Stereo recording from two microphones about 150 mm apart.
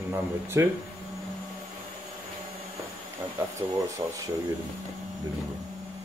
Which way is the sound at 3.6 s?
35° right (ahead or behind).